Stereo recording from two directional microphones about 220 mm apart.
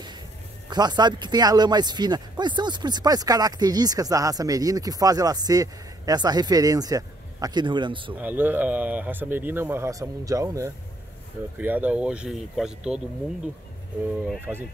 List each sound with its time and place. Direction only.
0.7 s speech: 20° right (ahead or behind)
8.1 s speech: 10° right (ahead or behind)
14.1 s speech: 5° right (ahead or behind)